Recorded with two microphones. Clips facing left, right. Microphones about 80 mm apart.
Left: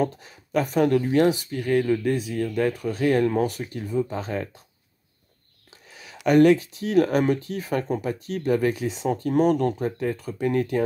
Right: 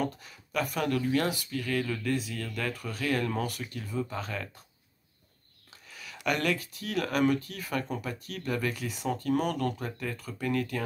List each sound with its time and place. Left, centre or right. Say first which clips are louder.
0.0 s speech: left 7 dB; left
5.9 s a sound: left 1 dB; left
6.2 s speech: left 13 dB; left
8.7 s speech: left 7 dB; left